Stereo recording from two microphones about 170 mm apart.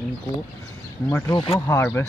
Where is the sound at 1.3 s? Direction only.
30° left (ahead or behind).